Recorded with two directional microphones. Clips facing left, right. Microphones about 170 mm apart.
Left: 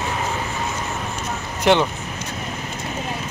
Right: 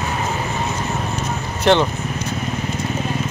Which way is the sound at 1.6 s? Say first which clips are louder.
Right 1 dB; 10° left (ahead or behind).